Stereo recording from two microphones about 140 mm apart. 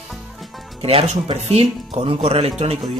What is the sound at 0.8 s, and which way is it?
Speech, 45° right (ahead or behind).